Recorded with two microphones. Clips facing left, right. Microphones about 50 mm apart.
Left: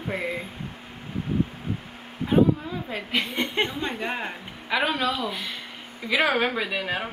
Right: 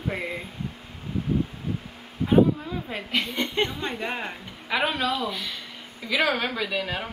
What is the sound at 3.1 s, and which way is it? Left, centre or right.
Speech, centre.